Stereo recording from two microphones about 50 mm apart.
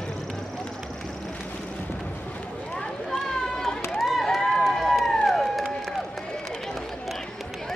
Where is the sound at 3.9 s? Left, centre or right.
Centre.